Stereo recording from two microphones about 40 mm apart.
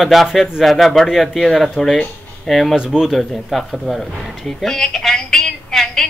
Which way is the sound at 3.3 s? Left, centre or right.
Centre.